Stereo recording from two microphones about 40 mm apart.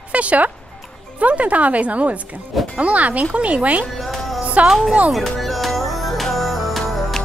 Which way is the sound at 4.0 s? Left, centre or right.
Centre.